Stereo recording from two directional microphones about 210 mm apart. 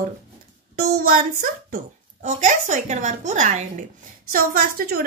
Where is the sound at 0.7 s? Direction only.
40° right (ahead or behind).